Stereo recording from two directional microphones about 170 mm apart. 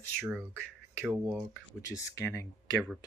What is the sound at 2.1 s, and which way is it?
Speech, 15° left (ahead or behind).